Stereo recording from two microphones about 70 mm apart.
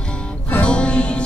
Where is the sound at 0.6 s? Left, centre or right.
Centre.